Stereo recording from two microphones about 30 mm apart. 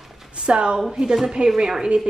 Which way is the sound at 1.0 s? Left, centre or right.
Centre.